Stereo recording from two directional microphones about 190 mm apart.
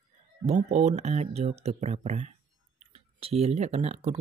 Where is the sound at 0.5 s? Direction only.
35° right (ahead or behind).